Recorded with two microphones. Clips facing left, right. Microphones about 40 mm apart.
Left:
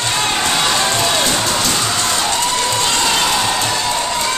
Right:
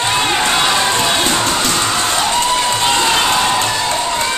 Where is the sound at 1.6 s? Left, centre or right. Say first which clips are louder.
Right 2 dB; centre.